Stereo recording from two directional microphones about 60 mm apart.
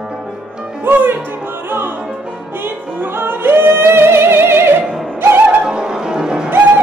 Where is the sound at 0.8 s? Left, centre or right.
Right.